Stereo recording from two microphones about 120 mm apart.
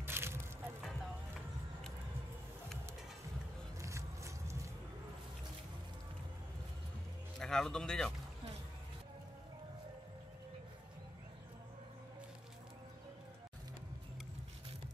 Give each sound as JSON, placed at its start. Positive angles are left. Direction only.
{"t": 0.0, "sound": "music", "side_deg": -20}
{"t": 3.8, "sound": "a sound", "side_deg": -25}
{"t": 7.3, "sound": "a man's voice", "side_deg": 5}